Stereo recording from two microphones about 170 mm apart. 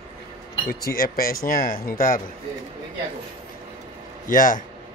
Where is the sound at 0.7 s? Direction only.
60° left (ahead or behind).